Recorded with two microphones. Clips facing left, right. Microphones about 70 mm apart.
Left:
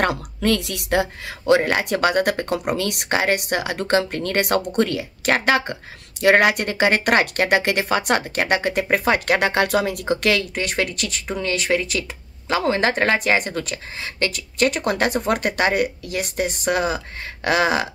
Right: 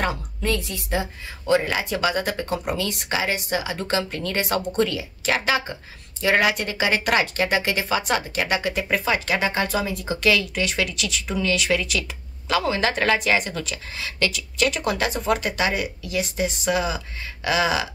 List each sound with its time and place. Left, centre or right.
0.0 s a woman's voice: left
1.5 s speech: left